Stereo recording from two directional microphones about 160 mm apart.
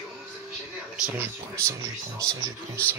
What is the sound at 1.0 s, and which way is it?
Speech, 10° right (ahead or behind).